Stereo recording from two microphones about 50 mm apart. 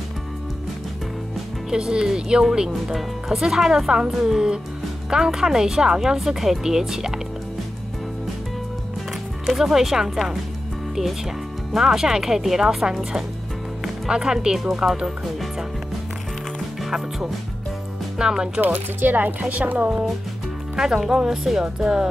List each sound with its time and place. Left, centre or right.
1.7 s speech: centre
2.7 s speech: centre
9.5 s speech: centre
11.7 s speech: centre
14.0 s speech: centre
18.1 s speech: centre
18.6 s speech: right
20.7 s speech: centre